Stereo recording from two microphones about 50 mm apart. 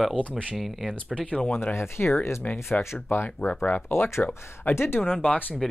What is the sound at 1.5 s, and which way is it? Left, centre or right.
Speech, left.